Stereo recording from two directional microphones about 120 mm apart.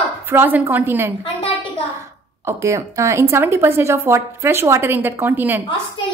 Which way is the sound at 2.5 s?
25° right (ahead or behind).